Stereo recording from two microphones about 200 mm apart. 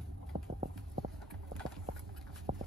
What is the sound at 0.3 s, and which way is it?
Clip-clop, 30° right (ahead or behind).